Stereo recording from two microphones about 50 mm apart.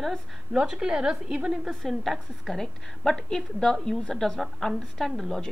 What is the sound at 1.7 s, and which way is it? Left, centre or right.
A woman's voice, centre.